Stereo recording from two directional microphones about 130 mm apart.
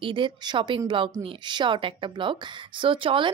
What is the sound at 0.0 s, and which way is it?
Speech, 40° right (ahead or behind).